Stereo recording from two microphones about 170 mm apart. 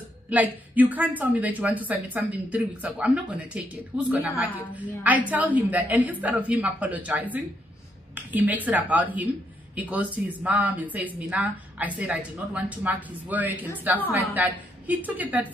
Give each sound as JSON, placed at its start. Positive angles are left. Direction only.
{"t": 0.3, "sound": "a woman's voice", "side_deg": -10}